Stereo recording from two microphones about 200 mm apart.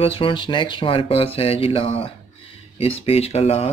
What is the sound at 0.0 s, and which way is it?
Speech, 25° left (ahead or behind).